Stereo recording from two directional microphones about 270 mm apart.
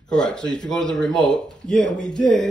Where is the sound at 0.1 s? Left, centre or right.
Centre.